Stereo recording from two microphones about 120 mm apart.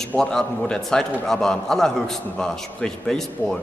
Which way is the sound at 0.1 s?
5° left (ahead or behind).